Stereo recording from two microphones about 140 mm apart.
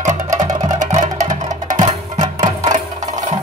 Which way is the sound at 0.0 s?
60° right (ahead or behind).